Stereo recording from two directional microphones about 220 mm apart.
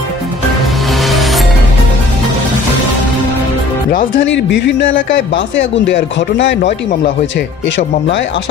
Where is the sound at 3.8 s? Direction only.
40° left (ahead or behind).